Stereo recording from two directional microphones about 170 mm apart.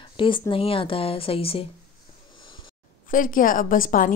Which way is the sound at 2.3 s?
30° left (ahead or behind).